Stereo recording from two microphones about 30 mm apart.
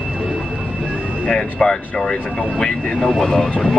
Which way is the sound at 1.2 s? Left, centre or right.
Left.